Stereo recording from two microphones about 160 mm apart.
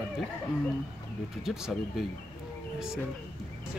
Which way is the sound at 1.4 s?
5° right (ahead or behind).